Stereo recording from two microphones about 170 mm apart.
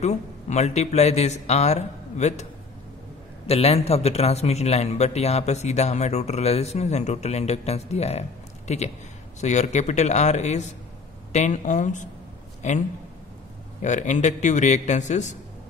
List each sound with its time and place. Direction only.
0.0 s a man's voice: 40° left (ahead or behind)
3.4 s a man's voice: 35° left (ahead or behind)
13.8 s a man's voice: 45° left (ahead or behind)